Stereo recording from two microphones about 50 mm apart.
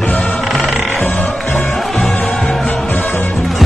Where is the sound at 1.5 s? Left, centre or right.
Centre.